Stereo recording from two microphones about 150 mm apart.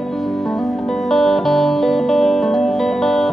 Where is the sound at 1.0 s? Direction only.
Centre (ahead or behind).